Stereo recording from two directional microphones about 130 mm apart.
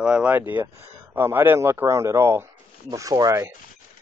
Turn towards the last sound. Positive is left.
turn(degrees=-25)  # may be behind; listen again after turning